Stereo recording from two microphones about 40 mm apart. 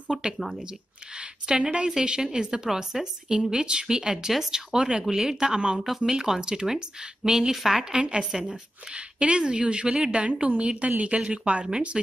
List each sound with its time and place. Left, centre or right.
0.1 s speech: centre
1.1 s a sound: right
1.9 s a woman's voice: centre
4.7 s a woman's voice: right
7.9 s a woman's voice: right